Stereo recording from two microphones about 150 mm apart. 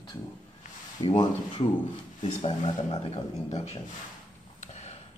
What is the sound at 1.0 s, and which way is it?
Speech, 25° left (ahead or behind).